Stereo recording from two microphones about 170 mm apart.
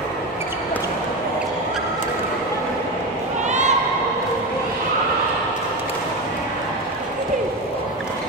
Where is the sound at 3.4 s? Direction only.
45° right (ahead or behind).